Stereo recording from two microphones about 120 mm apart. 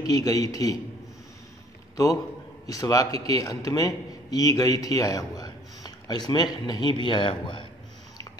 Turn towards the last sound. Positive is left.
turn(degrees=45)  # may be behind; listen again after turning